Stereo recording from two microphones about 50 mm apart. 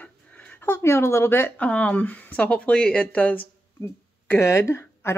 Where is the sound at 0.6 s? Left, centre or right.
Left.